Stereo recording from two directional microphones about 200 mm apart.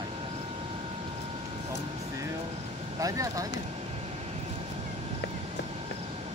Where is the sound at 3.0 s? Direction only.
15° right (ahead or behind).